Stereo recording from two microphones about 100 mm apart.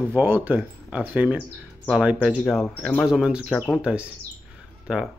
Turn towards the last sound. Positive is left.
turn(degrees=-5)  # may be behind; listen again after turning